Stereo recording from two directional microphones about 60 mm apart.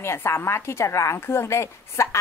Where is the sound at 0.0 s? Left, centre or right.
Left.